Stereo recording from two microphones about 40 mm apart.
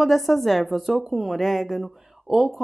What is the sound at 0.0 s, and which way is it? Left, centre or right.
Speech, centre.